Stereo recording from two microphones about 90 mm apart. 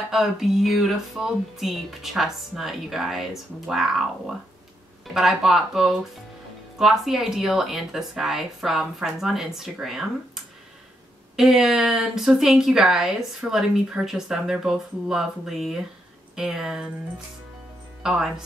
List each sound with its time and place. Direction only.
0.1 s speech: 5° right (ahead or behind)
5.1 s speech: 5° right (ahead or behind)
18.0 s speech: 5° right (ahead or behind)